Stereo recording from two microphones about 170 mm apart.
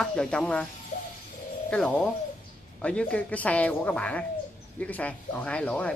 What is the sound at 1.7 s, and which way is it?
Speech, 5° left (ahead or behind).